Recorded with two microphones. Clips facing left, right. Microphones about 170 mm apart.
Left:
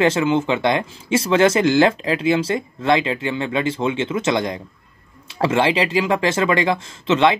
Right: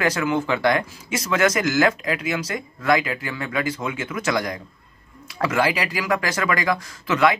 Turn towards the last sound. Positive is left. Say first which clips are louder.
# left 3 dB
turn(degrees=25)  # may be behind; listen again after turning